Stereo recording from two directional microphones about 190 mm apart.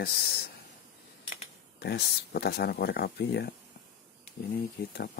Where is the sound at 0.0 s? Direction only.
55° left (ahead or behind).